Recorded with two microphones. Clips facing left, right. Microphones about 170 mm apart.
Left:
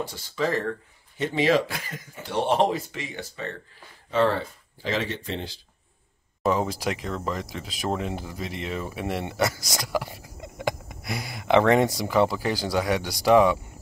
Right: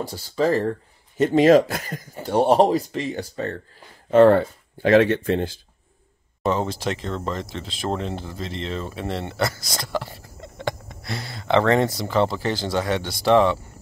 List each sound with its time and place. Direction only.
0.0 s speech: 35° right (ahead or behind)
6.4 s speech: 5° left (ahead or behind)